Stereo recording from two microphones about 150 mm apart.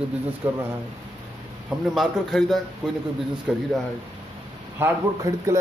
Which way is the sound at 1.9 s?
Centre (ahead or behind).